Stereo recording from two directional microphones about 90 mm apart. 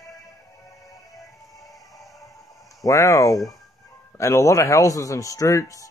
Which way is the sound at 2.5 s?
40° left (ahead or behind).